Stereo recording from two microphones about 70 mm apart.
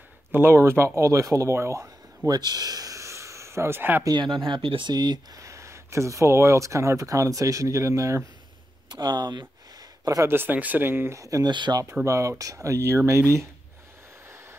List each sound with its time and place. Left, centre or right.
0.3 s speech: right
3.0 s a sound: right
4.0 s speech: right
4.8 s speech: right
5.4 s speech: right
8.8 s speech: right
10.2 s speech: right
11.1 s speech: right
11.4 s speech: right
11.8 s speech: right